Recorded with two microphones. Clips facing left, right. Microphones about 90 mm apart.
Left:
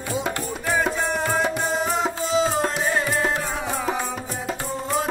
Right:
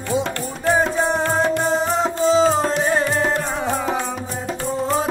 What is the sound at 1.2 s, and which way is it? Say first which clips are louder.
Music: right 4 dB; 10° left (ahead or behind).